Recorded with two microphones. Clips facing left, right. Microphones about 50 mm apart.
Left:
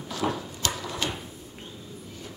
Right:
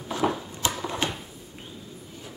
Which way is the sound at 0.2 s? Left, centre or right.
Centre.